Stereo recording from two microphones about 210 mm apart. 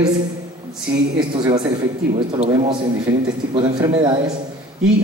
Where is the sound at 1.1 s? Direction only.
20° right (ahead or behind).